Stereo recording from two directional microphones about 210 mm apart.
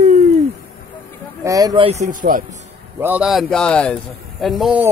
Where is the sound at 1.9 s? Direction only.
35° right (ahead or behind).